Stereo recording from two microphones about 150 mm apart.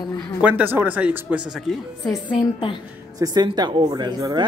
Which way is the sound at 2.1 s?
30° left (ahead or behind).